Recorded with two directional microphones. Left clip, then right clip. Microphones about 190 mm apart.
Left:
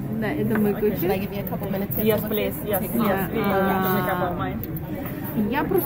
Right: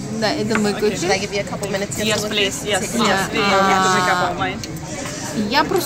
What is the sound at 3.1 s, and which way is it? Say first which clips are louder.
Speech: right 7 dB; 20° right (ahead or behind).